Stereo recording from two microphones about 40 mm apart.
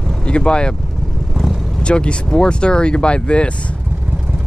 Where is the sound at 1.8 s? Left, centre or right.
Left.